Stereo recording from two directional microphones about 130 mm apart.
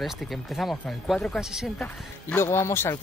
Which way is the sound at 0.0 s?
Centre (ahead or behind).